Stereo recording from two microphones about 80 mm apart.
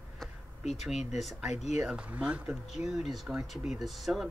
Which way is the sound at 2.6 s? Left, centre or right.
Centre.